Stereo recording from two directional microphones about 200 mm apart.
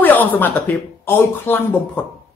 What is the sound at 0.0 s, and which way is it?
Speech, 10° left (ahead or behind).